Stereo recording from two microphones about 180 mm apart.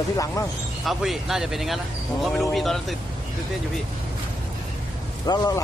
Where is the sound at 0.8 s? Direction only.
Centre (ahead or behind).